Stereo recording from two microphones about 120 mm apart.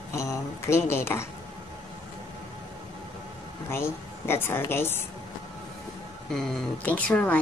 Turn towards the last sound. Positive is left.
turn(degrees=10)  # may be behind; listen again after turning